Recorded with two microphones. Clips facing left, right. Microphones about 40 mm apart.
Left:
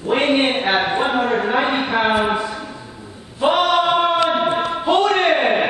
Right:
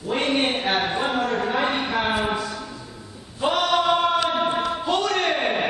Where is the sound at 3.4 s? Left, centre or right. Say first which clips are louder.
Left 5 dB; left.